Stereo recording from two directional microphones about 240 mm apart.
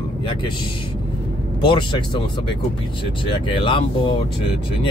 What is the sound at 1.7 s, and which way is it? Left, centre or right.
Speech, centre.